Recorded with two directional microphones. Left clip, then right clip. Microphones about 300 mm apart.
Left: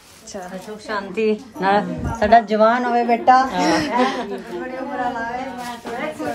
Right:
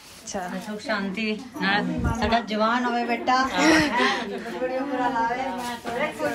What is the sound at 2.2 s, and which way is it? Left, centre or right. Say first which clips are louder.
A woman's voice: left 11 dB; left.